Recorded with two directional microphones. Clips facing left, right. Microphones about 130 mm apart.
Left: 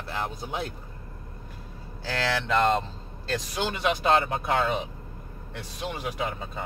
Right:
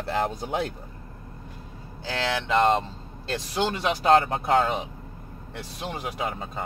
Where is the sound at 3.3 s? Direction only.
35° right (ahead or behind).